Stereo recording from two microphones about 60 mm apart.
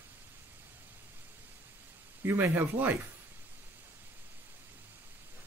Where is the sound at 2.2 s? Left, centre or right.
Right.